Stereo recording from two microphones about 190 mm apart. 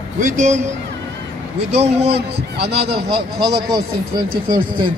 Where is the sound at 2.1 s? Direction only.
60° right (ahead or behind).